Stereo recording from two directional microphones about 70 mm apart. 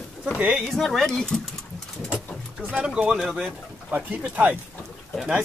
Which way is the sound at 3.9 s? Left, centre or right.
Right.